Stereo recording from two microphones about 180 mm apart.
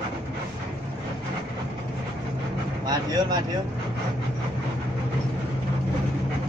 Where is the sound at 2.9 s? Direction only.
25° right (ahead or behind).